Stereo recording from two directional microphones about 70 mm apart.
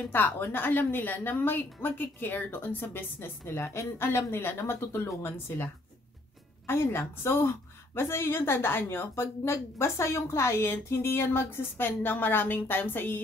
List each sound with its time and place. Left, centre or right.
0.1 s a woman's voice: left
6.7 s a woman's voice: left